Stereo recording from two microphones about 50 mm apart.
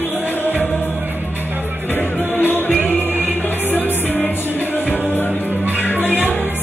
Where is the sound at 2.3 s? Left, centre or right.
Left.